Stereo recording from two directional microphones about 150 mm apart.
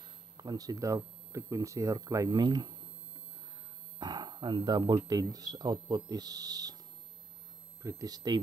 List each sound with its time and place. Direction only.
0.4 s speech: 25° right (ahead or behind)
4.0 s speech: 30° right (ahead or behind)
7.8 s speech: 25° right (ahead or behind)